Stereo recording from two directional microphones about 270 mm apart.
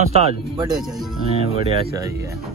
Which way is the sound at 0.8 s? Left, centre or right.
Centre.